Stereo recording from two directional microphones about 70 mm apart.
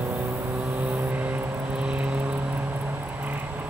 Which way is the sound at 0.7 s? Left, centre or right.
Right.